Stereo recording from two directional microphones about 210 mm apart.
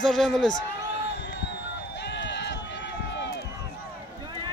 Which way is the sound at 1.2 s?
55° left (ahead or behind).